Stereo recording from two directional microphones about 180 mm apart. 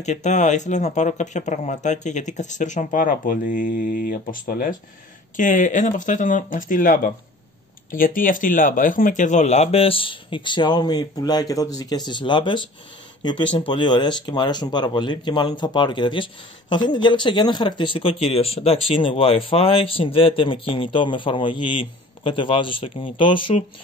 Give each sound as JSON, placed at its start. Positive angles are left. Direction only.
{"t": 0.0, "sound": "speech", "side_deg": 40}